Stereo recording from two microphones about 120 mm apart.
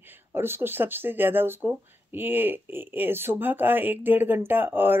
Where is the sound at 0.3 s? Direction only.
20° right (ahead or behind).